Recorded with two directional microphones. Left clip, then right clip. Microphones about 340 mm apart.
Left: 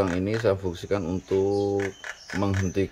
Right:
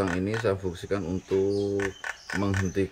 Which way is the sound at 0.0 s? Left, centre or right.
Centre.